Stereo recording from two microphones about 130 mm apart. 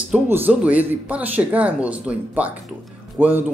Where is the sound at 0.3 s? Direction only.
10° right (ahead or behind).